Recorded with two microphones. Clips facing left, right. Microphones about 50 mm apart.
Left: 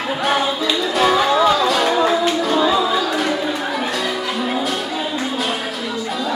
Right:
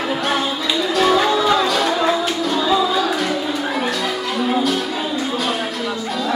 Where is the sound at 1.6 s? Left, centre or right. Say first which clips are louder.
Left 1 dB; centre.